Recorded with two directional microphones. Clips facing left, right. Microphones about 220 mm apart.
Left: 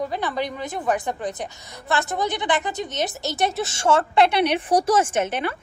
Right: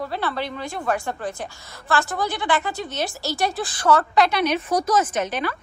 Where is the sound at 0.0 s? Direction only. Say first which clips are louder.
Left 1 dB; 15° left (ahead or behind).